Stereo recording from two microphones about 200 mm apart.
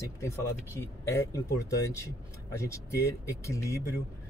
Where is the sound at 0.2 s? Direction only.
15° left (ahead or behind).